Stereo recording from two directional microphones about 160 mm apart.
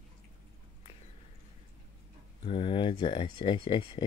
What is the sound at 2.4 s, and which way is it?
Speech, 35° left (ahead or behind).